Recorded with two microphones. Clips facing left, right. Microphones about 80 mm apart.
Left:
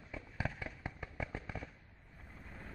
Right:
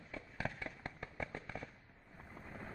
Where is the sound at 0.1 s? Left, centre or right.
Centre.